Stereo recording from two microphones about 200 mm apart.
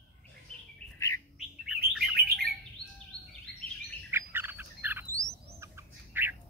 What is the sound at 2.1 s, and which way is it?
Bird, 50° right (ahead or behind).